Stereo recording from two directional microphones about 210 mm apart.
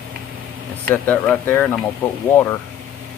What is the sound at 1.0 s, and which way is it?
Speech, 5° left (ahead or behind).